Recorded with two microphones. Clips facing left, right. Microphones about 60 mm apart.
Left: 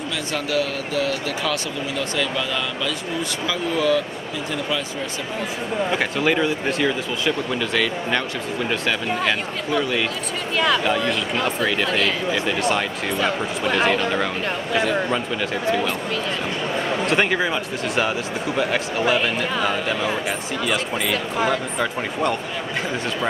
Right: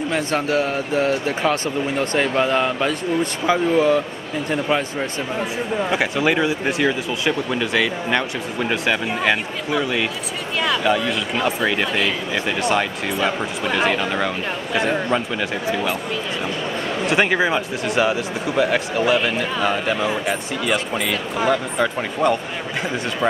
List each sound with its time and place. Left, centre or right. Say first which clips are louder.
0.1 s a man's voice: right 3 dB; right
5.9 s speech: right 1 dB; centre
17.0 s speech: right 4 dB; centre